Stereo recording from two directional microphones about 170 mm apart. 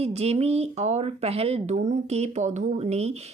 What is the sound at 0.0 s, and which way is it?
A woman's voice, 40° right (ahead or behind).